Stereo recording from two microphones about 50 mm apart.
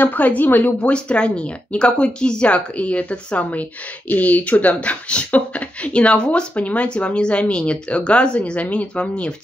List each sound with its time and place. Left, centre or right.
0.0 s speech: left
0.7 s speech: left
6.5 s speech: left